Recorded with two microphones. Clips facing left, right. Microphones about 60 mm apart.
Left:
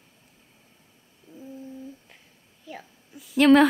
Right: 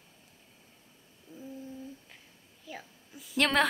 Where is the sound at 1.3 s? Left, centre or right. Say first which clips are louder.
Left 2 dB; left.